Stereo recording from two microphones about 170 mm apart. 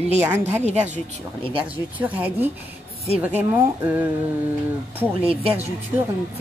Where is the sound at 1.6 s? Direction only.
10° right (ahead or behind).